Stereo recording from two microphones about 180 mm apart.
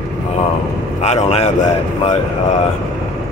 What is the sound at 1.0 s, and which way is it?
Speech, 35° left (ahead or behind).